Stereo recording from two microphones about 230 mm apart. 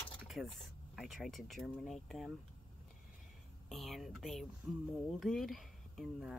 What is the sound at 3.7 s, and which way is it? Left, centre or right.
Speech, centre.